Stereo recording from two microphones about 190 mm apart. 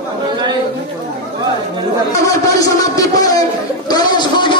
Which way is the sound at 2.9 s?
20° left (ahead or behind).